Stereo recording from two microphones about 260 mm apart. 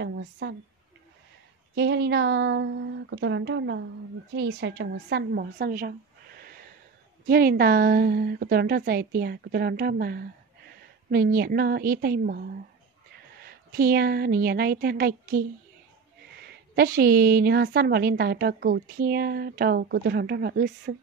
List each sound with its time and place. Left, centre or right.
0.0 s a woman's voice: right
1.8 s a woman's voice: right
16.4 s a woman's voice: right